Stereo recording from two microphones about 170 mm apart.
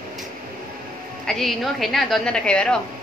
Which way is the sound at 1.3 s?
Centre (ahead or behind).